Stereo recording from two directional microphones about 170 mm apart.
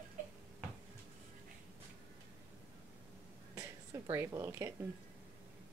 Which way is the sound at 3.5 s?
15° right (ahead or behind).